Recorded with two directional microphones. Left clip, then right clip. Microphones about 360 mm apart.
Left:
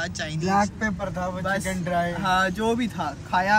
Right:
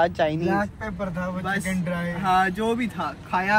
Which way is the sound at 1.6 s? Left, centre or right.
Left.